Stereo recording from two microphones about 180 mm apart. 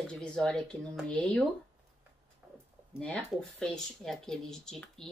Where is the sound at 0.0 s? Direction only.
5° left (ahead or behind).